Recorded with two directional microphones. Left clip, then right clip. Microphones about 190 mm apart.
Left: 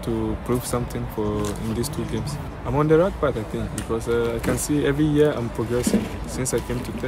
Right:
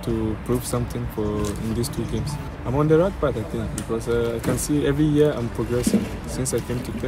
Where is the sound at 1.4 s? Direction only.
15° left (ahead or behind).